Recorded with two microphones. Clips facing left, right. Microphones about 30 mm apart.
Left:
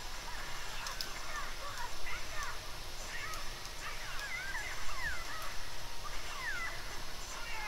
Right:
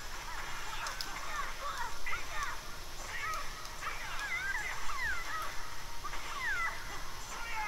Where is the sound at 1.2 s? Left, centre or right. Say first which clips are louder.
Right 4 dB; centre.